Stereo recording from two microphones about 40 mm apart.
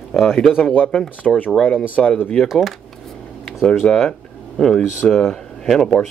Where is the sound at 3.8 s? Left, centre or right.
Centre.